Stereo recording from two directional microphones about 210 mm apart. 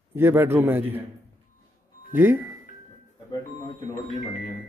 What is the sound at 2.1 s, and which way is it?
Speech, 10° right (ahead or behind).